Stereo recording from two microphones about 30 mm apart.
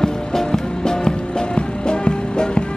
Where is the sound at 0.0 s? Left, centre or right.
Centre.